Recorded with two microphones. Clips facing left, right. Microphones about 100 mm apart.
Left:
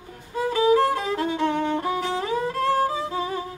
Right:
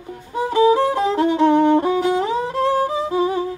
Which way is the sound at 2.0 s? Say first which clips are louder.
Right 6 dB; 20° right (ahead or behind).